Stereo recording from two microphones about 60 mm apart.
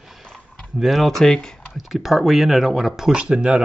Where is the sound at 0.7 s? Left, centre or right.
Centre.